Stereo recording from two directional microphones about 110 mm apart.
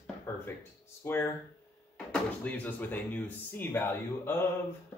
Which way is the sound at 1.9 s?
10° left (ahead or behind).